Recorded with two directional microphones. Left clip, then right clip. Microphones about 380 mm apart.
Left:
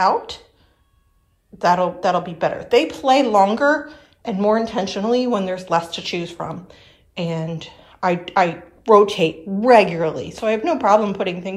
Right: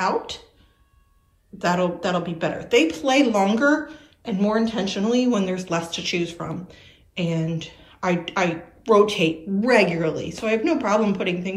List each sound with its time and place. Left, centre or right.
1.6 s speech: centre